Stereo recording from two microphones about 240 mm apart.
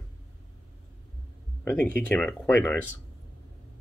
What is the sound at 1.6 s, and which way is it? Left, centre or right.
Speech, centre.